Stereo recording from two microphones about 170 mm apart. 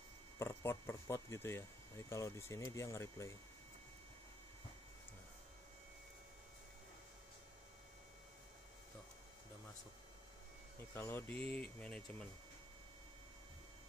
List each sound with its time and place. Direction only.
0.4 s speech: 15° left (ahead or behind)
11.0 s speech: 15° left (ahead or behind)